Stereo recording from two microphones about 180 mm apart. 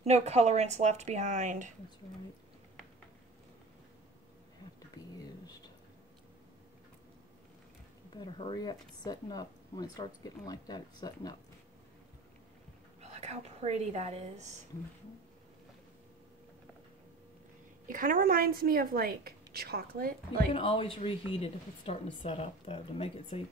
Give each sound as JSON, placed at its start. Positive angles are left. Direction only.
{"t": 0.0, "sound": "speech", "side_deg": -35}
{"t": 5.0, "sound": "whispering", "side_deg": 20}
{"t": 8.1, "sound": "speech", "side_deg": 25}
{"t": 13.0, "sound": "a woman's voice", "side_deg": -35}
{"t": 17.8, "sound": "a woman's voice", "side_deg": -50}
{"t": 20.5, "sound": "a woman's voice", "side_deg": 30}